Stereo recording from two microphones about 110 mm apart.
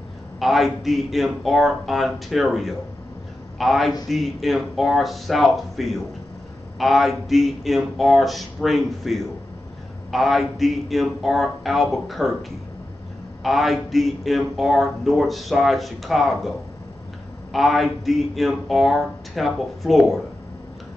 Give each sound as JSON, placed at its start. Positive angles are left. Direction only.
{"t": 0.4, "sound": "a man's voice", "side_deg": 0}
{"t": 13.4, "sound": "a man's voice", "side_deg": 0}